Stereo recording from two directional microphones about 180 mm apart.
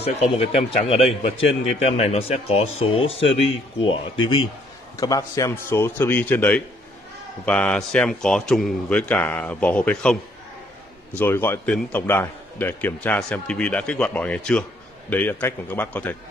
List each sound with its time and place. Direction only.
0.0 s a man's voice: 35° left (ahead or behind); by 10.1 s 5° left (ahead or behind)
11.1 s a man's voice: 10° left (ahead or behind)